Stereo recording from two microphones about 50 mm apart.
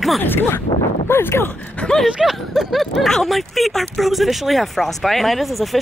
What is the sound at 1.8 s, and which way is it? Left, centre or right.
Speech, left.